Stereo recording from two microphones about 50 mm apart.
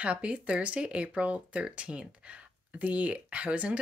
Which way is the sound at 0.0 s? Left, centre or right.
Right.